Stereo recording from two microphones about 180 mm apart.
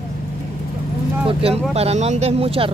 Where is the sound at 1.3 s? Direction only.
30° right (ahead or behind).